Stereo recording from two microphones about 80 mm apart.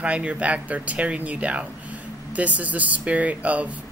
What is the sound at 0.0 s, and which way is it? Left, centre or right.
Speech, centre.